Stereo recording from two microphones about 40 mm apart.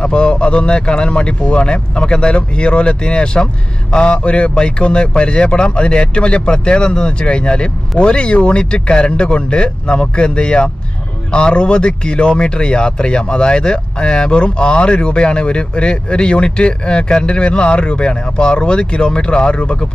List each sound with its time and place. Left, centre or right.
0.0 s speech: left